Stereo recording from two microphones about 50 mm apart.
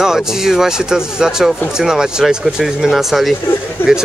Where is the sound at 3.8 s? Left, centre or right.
Left.